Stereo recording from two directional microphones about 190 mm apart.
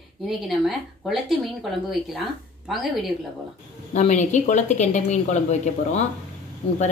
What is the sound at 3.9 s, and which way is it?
A woman's voice, 40° left (ahead or behind).